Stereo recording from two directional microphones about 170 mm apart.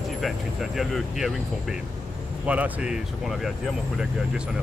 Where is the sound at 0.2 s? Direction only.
Centre (ahead or behind).